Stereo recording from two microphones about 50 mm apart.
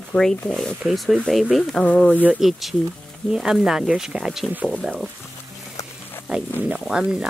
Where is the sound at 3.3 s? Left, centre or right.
Centre.